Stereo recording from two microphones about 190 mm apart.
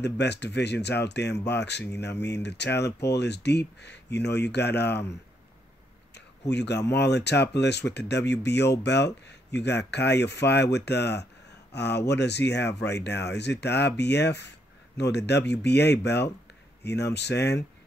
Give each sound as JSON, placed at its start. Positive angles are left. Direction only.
{"t": 0.0, "sound": "speech", "side_deg": 65}
{"t": 6.5, "sound": "speech", "side_deg": 65}